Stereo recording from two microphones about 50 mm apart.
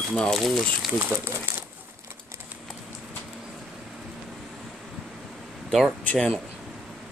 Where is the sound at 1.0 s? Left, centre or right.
Right.